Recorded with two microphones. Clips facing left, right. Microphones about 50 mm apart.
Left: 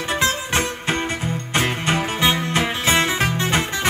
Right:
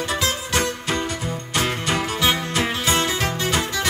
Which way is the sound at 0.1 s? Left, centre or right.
Left.